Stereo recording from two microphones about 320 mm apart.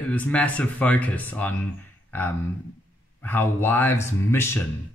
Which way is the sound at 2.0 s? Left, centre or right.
Centre.